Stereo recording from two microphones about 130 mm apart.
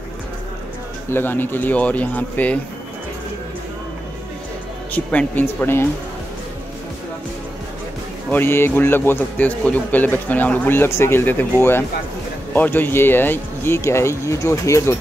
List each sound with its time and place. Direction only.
1.1 s speech: 15° left (ahead or behind)
4.9 s speech: 15° left (ahead or behind)
8.3 s speech: 15° left (ahead or behind)
12.5 s speech: 15° left (ahead or behind)